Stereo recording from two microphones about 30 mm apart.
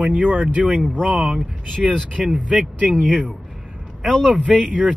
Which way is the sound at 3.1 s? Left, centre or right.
Centre.